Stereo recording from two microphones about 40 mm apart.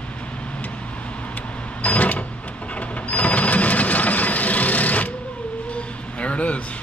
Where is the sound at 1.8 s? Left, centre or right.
Left.